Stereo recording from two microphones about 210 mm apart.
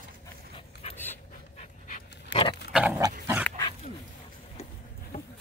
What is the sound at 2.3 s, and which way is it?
Pig, 55° left (ahead or behind).